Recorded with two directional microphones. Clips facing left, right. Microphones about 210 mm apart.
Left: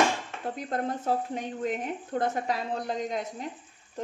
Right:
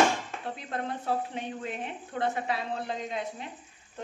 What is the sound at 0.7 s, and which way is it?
Speech, 40° left (ahead or behind).